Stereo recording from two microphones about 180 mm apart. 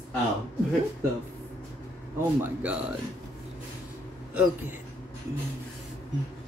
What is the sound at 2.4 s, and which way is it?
Speech, 10° right (ahead or behind).